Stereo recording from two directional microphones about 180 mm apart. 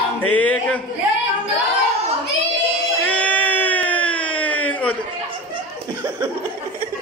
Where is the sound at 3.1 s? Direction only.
10° left (ahead or behind).